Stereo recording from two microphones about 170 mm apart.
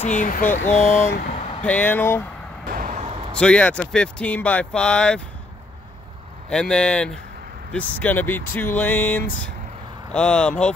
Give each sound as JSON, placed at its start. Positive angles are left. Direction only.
{"t": 0.0, "sound": "speech", "side_deg": 45}
{"t": 1.6, "sound": "speech", "side_deg": 10}
{"t": 2.7, "sound": "vehicle", "side_deg": -50}
{"t": 3.3, "sound": "speech", "side_deg": 5}
{"t": 6.5, "sound": "speech", "side_deg": 5}